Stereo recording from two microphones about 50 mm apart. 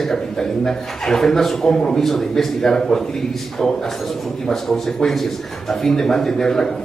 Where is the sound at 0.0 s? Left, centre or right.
Centre.